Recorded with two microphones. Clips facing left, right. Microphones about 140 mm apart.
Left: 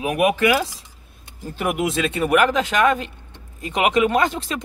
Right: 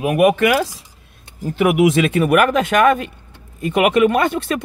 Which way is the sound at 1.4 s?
70° right (ahead or behind).